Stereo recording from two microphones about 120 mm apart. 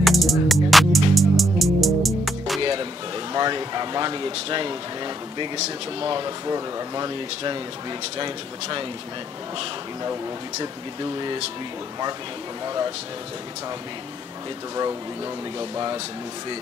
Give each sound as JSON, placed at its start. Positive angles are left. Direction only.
{"t": 0.0, "sound": "music", "side_deg": 0}
{"t": 2.6, "sound": "music", "side_deg": -40}
{"t": 3.3, "sound": "speech", "side_deg": -35}
{"t": 10.6, "sound": "speech", "side_deg": -35}
{"t": 12.6, "sound": "speech", "side_deg": -30}
{"t": 15.7, "sound": "speech", "side_deg": -30}